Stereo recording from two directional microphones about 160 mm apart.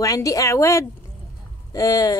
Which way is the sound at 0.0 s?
20° left (ahead or behind).